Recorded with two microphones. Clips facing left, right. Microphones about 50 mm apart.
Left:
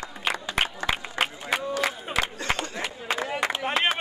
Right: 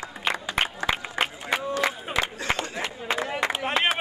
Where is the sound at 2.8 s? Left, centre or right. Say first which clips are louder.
Right 1 dB; centre.